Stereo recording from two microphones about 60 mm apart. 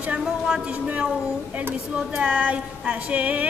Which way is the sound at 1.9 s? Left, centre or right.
Centre.